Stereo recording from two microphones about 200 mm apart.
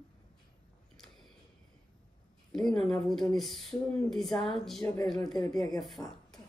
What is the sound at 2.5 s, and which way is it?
Speech, centre (ahead or behind).